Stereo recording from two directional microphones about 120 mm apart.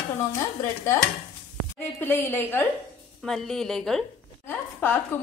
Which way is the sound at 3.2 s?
5° left (ahead or behind).